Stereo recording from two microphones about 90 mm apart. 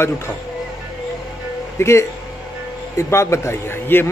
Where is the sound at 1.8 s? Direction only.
30° left (ahead or behind).